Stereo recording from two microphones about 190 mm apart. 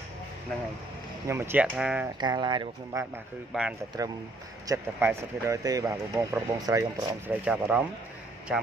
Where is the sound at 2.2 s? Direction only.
25° right (ahead or behind).